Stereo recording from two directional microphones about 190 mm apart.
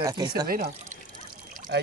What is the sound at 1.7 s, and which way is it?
Speech, 65° right (ahead or behind).